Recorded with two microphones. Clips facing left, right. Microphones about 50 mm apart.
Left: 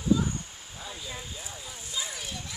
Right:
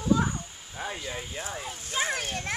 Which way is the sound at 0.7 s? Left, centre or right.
Right.